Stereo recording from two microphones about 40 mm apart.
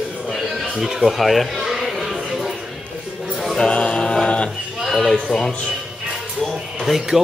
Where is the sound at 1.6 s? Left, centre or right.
Centre.